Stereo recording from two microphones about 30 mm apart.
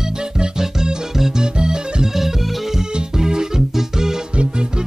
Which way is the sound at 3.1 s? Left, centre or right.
Right.